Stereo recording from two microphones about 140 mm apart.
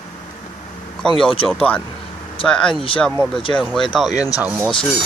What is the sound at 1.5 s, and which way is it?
Speech, 10° left (ahead or behind).